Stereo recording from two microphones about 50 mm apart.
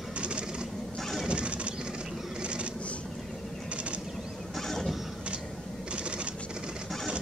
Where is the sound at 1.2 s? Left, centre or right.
Right.